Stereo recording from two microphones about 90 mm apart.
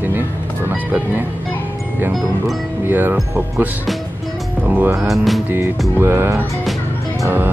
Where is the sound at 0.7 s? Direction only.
15° right (ahead or behind).